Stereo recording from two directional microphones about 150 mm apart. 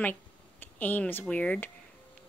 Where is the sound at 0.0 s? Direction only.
10° left (ahead or behind).